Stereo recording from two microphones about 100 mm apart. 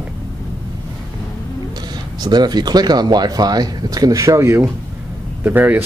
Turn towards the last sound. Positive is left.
turn(degrees=-20)  # may be behind; listen again after turning